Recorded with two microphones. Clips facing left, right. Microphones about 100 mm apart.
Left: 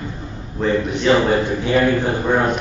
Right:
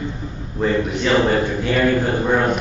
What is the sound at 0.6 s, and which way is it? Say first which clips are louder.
Speech: even; 5° right (ahead or behind).